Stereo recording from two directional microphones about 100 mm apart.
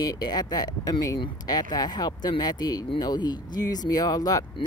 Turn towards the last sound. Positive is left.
turn(degrees=35)  # may be behind; listen again after turning